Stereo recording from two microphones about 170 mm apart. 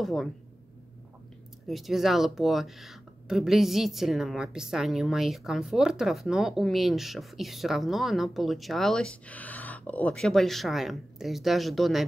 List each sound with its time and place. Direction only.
0.0 s speech: centre (ahead or behind)
1.7 s speech: centre (ahead or behind)